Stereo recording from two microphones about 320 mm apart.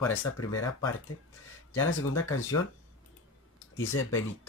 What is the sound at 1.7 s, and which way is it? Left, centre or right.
Speech, left.